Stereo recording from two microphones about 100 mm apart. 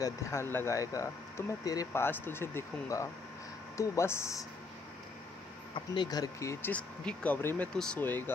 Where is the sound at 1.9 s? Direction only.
25° left (ahead or behind).